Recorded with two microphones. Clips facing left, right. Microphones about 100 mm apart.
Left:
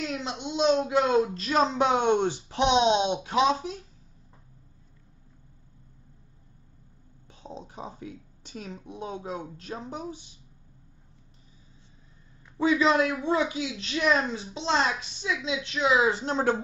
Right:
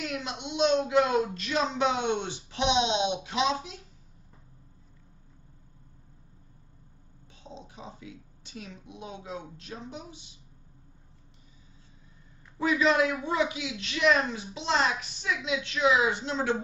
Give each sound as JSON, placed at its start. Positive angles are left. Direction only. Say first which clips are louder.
{"t": 0.0, "sound": "a sound", "louder": "left 2 dB", "side_deg": 25}
{"t": 0.8, "sound": "speech", "louder": "left 1 dB", "side_deg": 25}
{"t": 7.4, "sound": "a woman's voice", "louder": "left 5 dB", "side_deg": 45}
{"t": 12.5, "sound": "a woman's voice", "louder": "left 2 dB", "side_deg": 25}